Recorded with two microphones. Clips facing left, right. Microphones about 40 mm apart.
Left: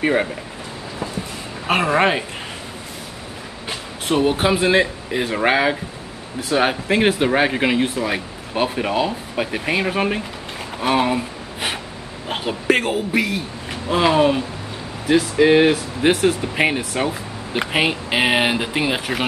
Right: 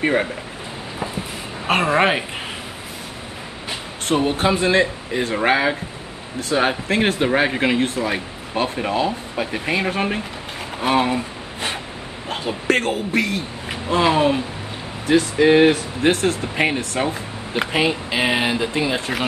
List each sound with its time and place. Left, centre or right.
0.0 s speech: centre
1.7 s speech: centre
3.6 s speech: centre
10.8 s a sound: centre
12.4 s speech: centre
17.7 s speech: left